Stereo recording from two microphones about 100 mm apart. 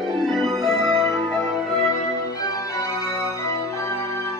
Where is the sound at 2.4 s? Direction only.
35° left (ahead or behind).